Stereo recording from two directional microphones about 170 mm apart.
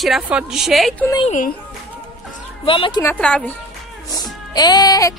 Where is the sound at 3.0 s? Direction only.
5° left (ahead or behind).